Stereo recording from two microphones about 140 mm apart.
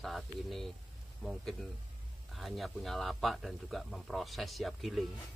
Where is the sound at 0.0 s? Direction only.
Centre (ahead or behind).